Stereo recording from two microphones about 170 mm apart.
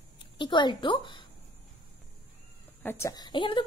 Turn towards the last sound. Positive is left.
turn(degrees=30)  # may be behind; listen again after turning